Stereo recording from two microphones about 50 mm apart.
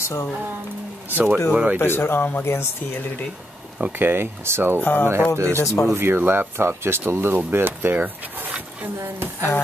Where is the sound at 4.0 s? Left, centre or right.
Right.